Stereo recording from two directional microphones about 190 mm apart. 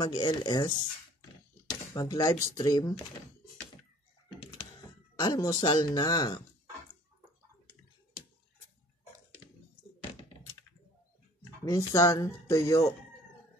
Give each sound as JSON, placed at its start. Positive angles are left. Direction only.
{"t": 0.0, "sound": "speech", "side_deg": 20}
{"t": 2.0, "sound": "speech", "side_deg": 20}
{"t": 5.1, "sound": "speech", "side_deg": 20}
{"t": 11.6, "sound": "speech", "side_deg": 20}